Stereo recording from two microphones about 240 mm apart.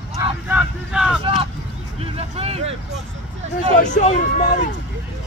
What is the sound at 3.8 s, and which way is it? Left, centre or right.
Speech, left.